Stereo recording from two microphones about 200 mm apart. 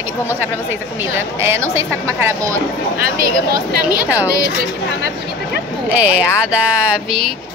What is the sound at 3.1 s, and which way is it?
Speech, 45° right (ahead or behind).